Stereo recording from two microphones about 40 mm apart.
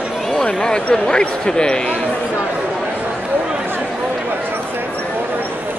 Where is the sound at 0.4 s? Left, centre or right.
Left.